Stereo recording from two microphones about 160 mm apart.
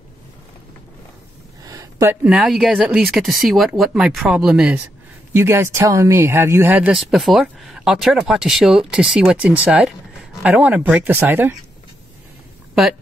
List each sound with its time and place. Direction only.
1.6 s a sound: 20° right (ahead or behind)
2.2 s speech: 5° right (ahead or behind)
5.3 s speech: 15° right (ahead or behind)